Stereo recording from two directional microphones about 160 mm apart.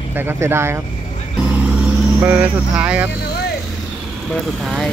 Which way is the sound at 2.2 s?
10° right (ahead or behind).